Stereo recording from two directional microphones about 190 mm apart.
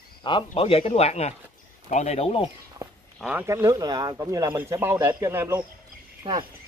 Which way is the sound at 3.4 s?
15° right (ahead or behind).